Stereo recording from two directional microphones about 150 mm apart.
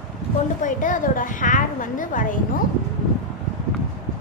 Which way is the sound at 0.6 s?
60° left (ahead or behind).